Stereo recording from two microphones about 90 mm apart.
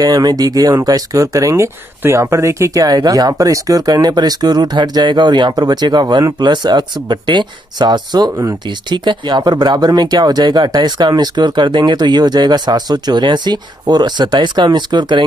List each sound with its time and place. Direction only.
0.0 s speech: 50° right (ahead or behind)
8.6 s speech: 60° right (ahead or behind)